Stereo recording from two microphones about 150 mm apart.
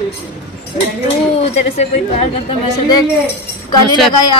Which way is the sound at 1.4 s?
45° left (ahead or behind).